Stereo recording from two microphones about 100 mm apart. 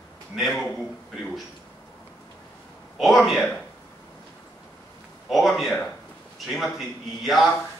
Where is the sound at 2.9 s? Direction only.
Centre (ahead or behind).